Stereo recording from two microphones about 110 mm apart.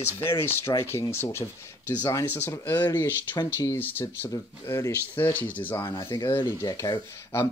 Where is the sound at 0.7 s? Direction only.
20° left (ahead or behind).